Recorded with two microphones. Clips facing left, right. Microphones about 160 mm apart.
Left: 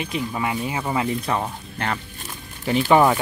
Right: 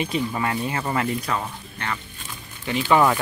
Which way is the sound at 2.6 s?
35° left (ahead or behind).